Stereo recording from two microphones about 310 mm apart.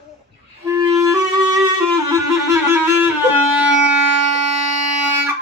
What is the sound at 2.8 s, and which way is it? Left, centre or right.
Music, centre.